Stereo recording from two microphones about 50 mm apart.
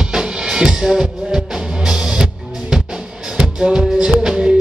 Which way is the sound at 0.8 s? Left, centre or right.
Centre.